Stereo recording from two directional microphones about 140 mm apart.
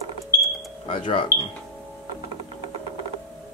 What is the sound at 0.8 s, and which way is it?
Speech, 35° left (ahead or behind).